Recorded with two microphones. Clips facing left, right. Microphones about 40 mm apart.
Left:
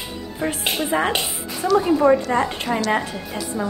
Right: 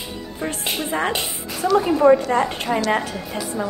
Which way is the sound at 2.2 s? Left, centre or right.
Centre.